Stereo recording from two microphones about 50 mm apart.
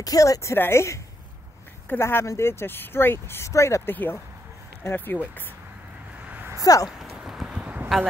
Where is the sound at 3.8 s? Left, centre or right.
Left.